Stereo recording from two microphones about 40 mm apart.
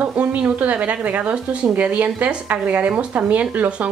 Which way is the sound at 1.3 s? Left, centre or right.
Right.